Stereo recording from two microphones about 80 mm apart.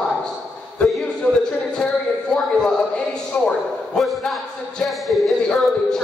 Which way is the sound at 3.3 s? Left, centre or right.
Centre.